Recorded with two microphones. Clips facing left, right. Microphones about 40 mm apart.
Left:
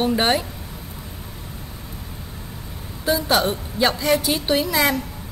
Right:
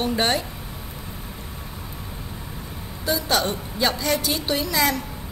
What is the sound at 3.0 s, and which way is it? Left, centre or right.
A woman's voice, centre.